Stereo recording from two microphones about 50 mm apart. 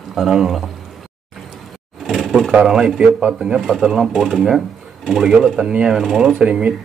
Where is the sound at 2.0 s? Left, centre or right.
Centre.